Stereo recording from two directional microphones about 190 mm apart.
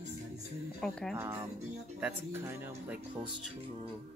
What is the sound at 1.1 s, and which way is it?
Speech, 15° right (ahead or behind).